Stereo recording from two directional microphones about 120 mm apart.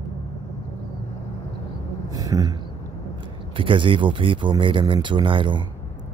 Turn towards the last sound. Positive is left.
turn(degrees=-45)  # may be behind; listen again after turning